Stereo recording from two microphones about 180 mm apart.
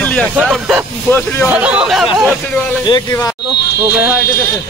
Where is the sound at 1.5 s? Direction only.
5° right (ahead or behind).